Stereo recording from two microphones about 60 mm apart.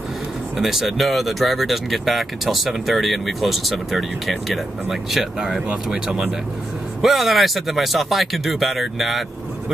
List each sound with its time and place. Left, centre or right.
0.6 s speech: centre
7.0 s speech: centre